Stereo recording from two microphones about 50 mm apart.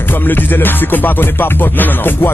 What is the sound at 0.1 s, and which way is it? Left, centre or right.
Music, left.